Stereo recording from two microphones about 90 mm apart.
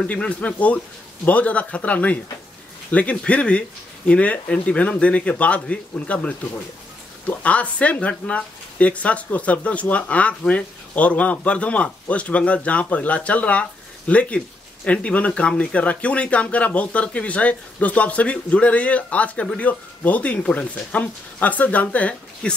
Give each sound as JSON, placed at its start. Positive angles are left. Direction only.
{"t": 0.0, "sound": "speech", "side_deg": 15}